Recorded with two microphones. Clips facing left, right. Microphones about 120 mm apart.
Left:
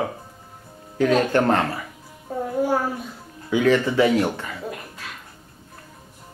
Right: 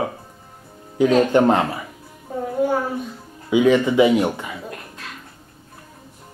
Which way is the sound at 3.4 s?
15° right (ahead or behind).